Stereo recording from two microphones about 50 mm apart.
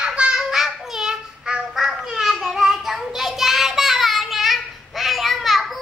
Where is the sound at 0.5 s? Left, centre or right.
Centre.